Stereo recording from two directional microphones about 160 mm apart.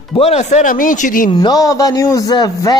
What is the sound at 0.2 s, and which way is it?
A man's voice, 45° left (ahead or behind).